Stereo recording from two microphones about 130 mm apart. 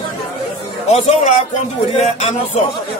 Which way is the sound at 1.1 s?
65° left (ahead or behind).